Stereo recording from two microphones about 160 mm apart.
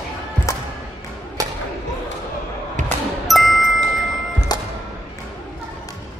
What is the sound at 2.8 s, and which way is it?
Music, 50° right (ahead or behind).